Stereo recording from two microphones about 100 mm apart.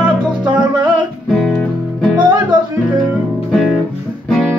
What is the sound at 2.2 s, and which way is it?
Music, 50° right (ahead or behind).